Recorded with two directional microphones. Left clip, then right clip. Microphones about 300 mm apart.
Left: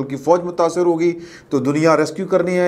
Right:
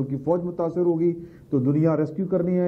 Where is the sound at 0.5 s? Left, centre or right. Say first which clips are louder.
Left 7 dB; centre.